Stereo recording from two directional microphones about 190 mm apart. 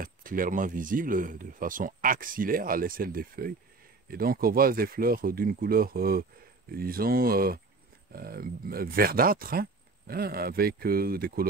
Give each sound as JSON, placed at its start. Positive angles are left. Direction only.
{"t": 0.0, "sound": "speech", "side_deg": -45}